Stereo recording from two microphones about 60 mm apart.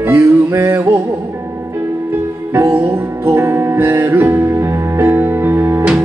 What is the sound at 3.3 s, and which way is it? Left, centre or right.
Music, right.